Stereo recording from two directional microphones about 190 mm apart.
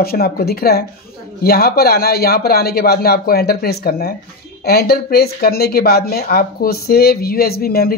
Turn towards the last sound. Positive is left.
turn(degrees=55)  # may be behind; listen again after turning